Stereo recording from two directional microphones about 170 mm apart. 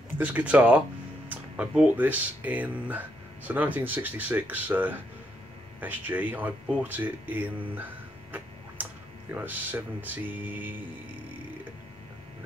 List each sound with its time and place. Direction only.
0.2 s speech: 10° right (ahead or behind)
9.3 s speech: 10° right (ahead or behind)